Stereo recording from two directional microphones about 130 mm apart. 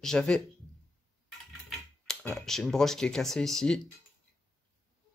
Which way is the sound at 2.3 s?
5° left (ahead or behind).